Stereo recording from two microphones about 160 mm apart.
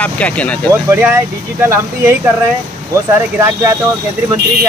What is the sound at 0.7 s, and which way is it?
Speech, 15° right (ahead or behind).